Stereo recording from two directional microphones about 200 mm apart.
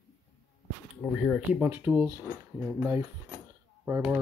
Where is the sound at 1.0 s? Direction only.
Centre (ahead or behind).